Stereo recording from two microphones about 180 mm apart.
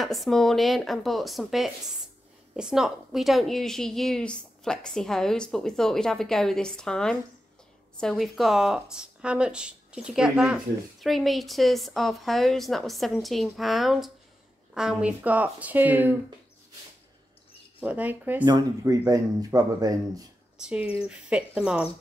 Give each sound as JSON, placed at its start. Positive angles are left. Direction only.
{"t": 0.0, "sound": "speech", "side_deg": 0}
{"t": 17.7, "sound": "speech", "side_deg": -10}
{"t": 18.4, "sound": "speech", "side_deg": -20}
{"t": 20.5, "sound": "speech", "side_deg": -5}